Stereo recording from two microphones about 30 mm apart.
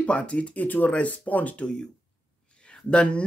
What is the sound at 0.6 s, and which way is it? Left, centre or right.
Speech, left.